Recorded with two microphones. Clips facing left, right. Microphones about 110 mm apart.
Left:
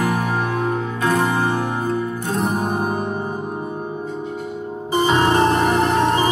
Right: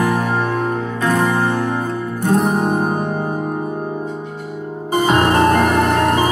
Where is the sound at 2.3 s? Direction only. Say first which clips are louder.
Right 7 dB; 55° right (ahead or behind).